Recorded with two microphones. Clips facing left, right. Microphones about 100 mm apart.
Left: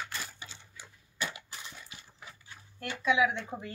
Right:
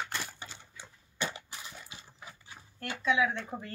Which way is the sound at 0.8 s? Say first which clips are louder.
Right 1 dB; 30° right (ahead or behind).